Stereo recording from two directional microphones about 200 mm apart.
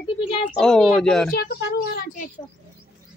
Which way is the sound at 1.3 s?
55° left (ahead or behind).